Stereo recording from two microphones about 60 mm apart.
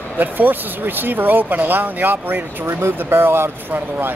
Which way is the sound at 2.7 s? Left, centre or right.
Right.